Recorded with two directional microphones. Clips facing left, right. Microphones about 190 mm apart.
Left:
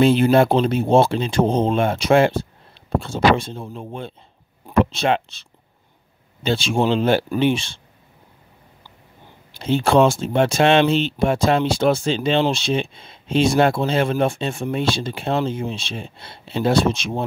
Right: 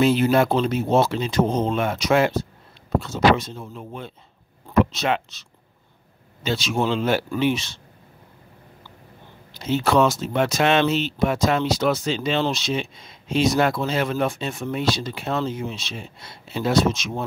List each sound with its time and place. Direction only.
0.0 s speech: 30° left (ahead or behind)
9.6 s speech: 30° left (ahead or behind)